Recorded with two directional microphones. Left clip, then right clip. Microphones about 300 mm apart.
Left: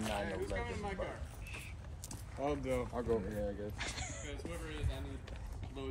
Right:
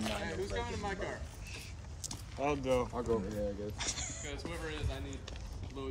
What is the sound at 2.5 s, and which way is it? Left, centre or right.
Speech, right.